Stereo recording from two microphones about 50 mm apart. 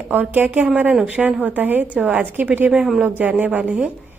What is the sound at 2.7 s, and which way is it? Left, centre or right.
Speech, centre.